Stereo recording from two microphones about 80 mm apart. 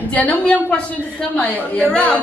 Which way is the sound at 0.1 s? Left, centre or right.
Centre.